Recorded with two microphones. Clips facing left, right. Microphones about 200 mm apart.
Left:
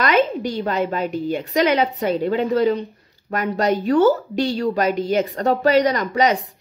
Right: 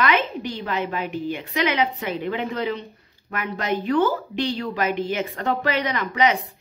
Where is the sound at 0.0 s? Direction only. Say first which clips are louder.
Left 4 dB; 40° left (ahead or behind).